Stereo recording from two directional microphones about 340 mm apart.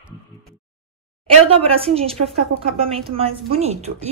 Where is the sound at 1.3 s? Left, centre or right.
Centre.